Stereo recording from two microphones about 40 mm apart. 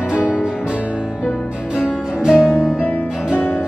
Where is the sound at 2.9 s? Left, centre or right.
Left.